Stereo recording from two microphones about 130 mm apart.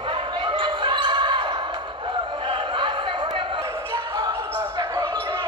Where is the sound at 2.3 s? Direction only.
40° right (ahead or behind).